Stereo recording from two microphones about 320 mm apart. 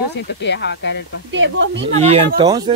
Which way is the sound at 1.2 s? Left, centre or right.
Right.